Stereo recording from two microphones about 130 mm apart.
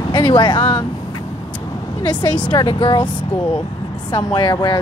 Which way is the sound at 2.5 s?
35° left (ahead or behind).